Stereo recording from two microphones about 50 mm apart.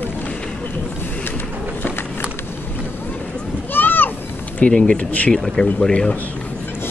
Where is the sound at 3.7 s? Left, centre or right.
Left.